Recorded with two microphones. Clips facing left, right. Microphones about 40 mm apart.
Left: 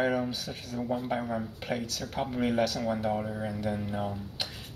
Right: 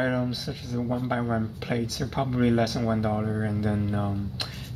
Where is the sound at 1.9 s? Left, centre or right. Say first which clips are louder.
Right 5 dB; right.